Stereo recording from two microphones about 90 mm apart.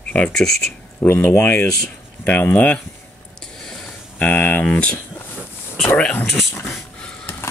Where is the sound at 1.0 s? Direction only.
25° left (ahead or behind).